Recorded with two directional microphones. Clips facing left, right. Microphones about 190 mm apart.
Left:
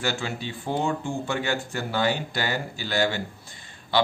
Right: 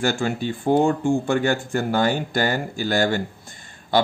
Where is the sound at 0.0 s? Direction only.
50° right (ahead or behind).